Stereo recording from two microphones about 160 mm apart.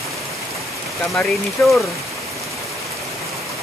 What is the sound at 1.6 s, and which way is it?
Speech, 5° left (ahead or behind).